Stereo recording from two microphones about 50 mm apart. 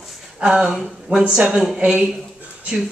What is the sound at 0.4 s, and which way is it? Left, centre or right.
Speech, centre.